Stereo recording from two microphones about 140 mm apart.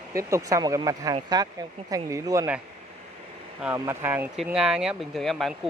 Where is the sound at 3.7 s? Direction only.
20° right (ahead or behind); by 5.5 s centre (ahead or behind).